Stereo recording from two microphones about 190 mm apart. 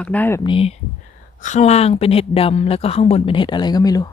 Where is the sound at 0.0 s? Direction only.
10° left (ahead or behind).